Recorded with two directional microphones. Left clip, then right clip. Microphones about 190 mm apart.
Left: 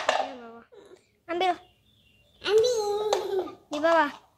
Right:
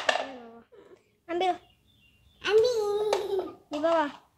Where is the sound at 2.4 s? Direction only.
15° right (ahead or behind).